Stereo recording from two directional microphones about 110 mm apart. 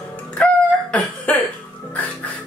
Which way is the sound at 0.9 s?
15° left (ahead or behind).